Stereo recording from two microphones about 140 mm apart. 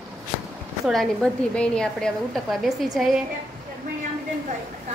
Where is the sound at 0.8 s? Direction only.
5° left (ahead or behind).